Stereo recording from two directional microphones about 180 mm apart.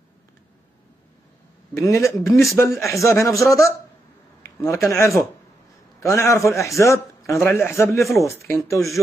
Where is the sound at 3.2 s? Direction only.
15° left (ahead or behind).